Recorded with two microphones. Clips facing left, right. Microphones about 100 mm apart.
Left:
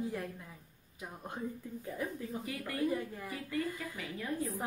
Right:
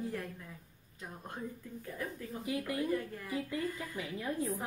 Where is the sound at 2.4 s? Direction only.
20° right (ahead or behind).